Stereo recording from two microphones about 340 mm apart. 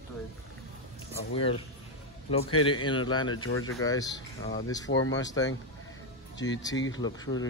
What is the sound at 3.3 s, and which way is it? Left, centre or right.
Speech, left.